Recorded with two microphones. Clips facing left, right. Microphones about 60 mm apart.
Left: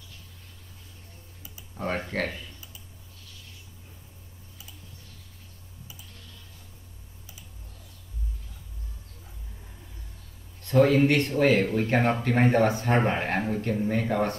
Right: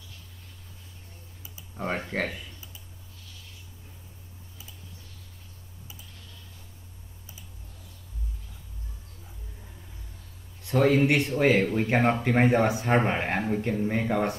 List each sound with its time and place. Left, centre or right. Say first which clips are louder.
1.8 s speech: even; centre
10.6 s speech: left 2 dB; centre